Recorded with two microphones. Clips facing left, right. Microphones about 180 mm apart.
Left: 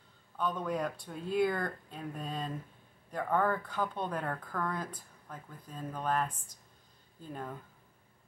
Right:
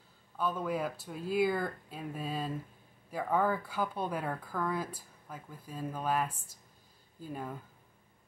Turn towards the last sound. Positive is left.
turn(degrees=-10)  # may be behind; listen again after turning